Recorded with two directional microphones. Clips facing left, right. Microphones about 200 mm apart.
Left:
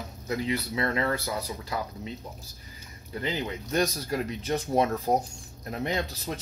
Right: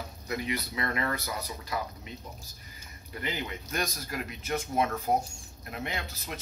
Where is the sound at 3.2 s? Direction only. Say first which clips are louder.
Left 4 dB; 30° left (ahead or behind).